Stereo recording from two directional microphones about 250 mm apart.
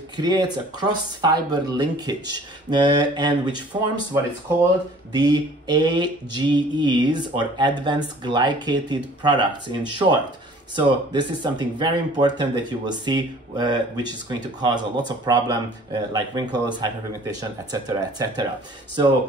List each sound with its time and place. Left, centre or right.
0.2 s mantra: centre
11.1 s mantra: centre